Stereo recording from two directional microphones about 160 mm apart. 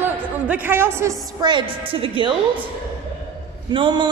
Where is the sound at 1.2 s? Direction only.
30° right (ahead or behind).